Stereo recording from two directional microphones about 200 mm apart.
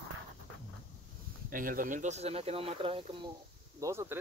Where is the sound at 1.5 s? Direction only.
45° right (ahead or behind).